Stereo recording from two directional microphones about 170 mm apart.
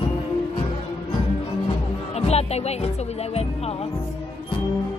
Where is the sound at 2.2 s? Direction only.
40° left (ahead or behind).